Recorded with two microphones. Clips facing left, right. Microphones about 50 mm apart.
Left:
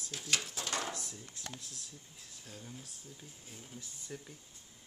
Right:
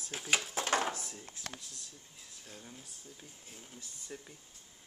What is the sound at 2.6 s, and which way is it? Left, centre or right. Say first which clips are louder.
Speech: left 1 dB; centre.